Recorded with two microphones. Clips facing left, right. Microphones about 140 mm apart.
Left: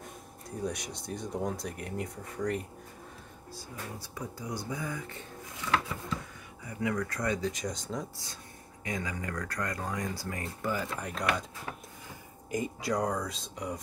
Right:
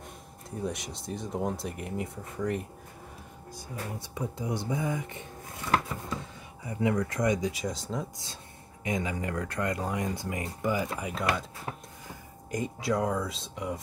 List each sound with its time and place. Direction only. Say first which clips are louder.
0.7 s speech: right 1 dB; centre (ahead or behind)
3.5 s speech: right 4 dB; 20° right (ahead or behind)
5.7 s a sound: right 2 dB; 40° right (ahead or behind)
6.6 s speech: right 4 dB; 25° right (ahead or behind); by 8.1 s centre (ahead or behind)
8.8 s speech: right 5 dB; 20° right (ahead or behind)
11.7 s a sound: right 4 dB; 30° right (ahead or behind)
12.4 s speech: right 2 dB; 5° left (ahead or behind)